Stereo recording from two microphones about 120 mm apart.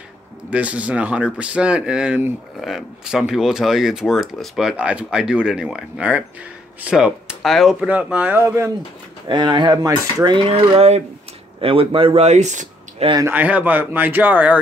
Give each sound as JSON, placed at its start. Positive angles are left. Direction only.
{"t": 0.5, "sound": "speech", "side_deg": -10}
{"t": 9.3, "sound": "speech", "side_deg": -40}
{"t": 10.5, "sound": "speech", "side_deg": -55}
{"t": 13.2, "sound": "speech", "side_deg": -15}